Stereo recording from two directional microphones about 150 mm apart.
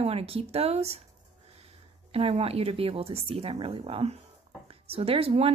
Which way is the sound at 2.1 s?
40° right (ahead or behind).